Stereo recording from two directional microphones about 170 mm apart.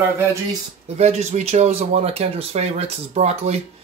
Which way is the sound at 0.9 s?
40° right (ahead or behind).